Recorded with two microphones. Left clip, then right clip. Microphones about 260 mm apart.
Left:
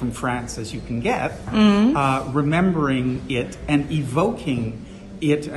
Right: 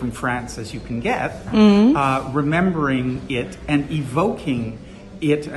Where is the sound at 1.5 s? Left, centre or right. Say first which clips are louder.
Right 3 dB; centre.